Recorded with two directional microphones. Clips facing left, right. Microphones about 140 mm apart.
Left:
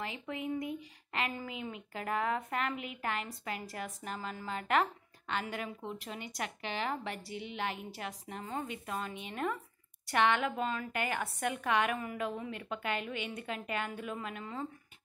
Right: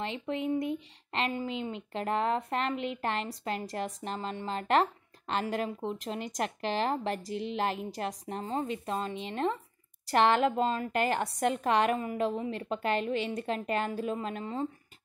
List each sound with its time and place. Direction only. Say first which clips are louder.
0.0 s a woman's voice: right 6 dB; 25° right (ahead or behind)